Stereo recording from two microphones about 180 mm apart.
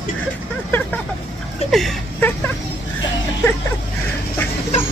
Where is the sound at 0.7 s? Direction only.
10° left (ahead or behind).